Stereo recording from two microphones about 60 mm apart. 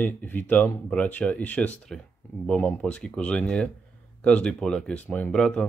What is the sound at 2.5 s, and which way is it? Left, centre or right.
Speech, left.